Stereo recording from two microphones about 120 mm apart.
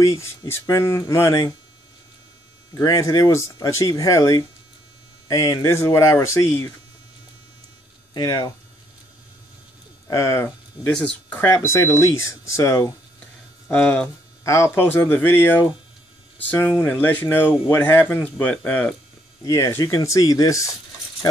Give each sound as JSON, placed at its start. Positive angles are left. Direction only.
{"t": 0.0, "sound": "speech", "side_deg": 25}
{"t": 2.7, "sound": "speech", "side_deg": 30}
{"t": 8.1, "sound": "speech", "side_deg": 35}
{"t": 10.0, "sound": "speech", "side_deg": 25}
{"t": 10.9, "sound": "speech", "side_deg": 5}
{"t": 13.7, "sound": "speech", "side_deg": 10}
{"t": 14.4, "sound": "speech", "side_deg": 25}
{"t": 19.4, "sound": "speech", "side_deg": 25}